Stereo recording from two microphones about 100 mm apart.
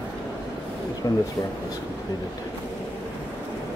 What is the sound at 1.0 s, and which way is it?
Speech, 35° left (ahead or behind).